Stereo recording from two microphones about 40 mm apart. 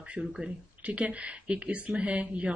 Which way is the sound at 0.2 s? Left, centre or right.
Right.